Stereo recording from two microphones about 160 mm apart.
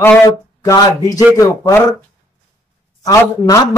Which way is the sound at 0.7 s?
20° left (ahead or behind).